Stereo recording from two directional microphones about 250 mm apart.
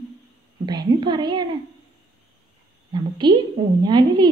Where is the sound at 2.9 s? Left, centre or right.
Centre.